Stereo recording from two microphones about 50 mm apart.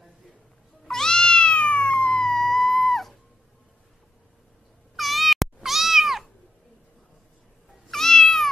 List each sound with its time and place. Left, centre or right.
0.8 s cat: centre
2.0 s music: centre
4.9 s cat: centre
7.9 s cat: centre